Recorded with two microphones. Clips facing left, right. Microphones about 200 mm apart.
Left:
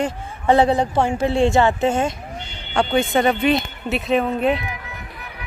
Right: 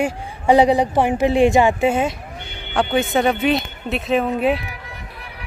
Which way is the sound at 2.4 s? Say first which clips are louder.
Right 3 dB; 55° right (ahead or behind).